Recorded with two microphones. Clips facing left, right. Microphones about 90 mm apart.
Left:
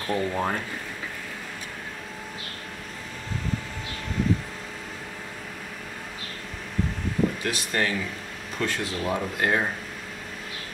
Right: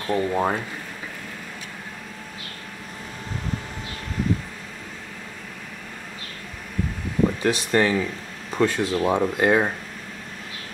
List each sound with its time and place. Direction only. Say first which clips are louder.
0.0 s speech: right 4 dB; 10° right (ahead or behind)
7.4 s speech: right 7 dB; 30° right (ahead or behind)